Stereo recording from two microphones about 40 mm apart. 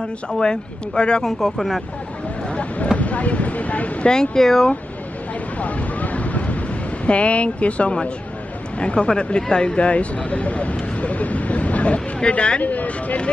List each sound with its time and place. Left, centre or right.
0.4 s speech: left
1.2 s speech: centre
3.0 s a sound: left
4.1 s speech: centre
5.6 s vehicle: left
7.1 s speech: left
12.6 s speech: left